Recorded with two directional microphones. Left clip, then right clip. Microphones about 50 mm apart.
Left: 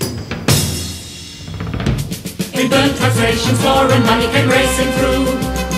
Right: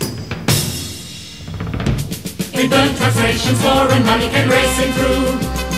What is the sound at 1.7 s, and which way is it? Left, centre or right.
Drum, left.